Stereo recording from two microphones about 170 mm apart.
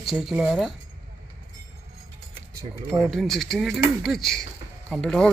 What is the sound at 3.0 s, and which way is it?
Speech, centre (ahead or behind).